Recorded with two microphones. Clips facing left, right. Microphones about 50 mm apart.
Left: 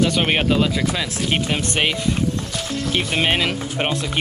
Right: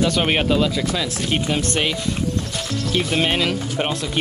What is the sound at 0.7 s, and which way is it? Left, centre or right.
Speech, left.